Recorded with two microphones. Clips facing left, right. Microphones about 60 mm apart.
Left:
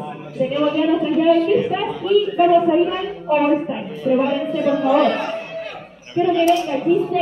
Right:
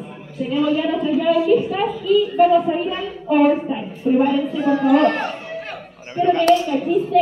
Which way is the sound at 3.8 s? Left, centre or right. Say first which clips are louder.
Even; left.